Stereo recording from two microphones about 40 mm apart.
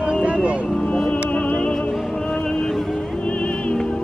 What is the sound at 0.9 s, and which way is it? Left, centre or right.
Music, left.